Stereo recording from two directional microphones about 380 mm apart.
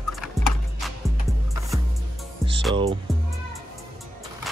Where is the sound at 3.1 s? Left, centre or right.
Centre.